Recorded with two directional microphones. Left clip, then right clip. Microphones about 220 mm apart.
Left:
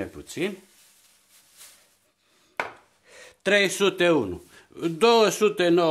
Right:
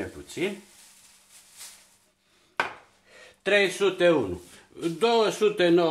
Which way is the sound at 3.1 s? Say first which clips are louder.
Left 1 dB; 60° left (ahead or behind).